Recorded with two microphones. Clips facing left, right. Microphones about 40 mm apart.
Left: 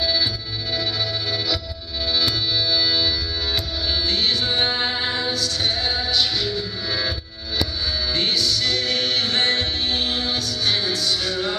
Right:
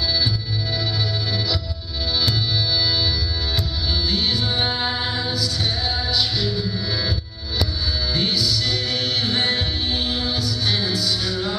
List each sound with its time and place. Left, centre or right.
0.0 s music: centre
2.1 s music: centre
4.5 s music: centre
8.8 s music: left
9.1 s music: centre
9.8 s music: left
10.3 s music: centre